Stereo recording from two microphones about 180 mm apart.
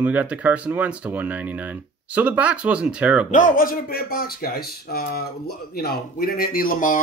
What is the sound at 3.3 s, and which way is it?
Speech, 50° left (ahead or behind).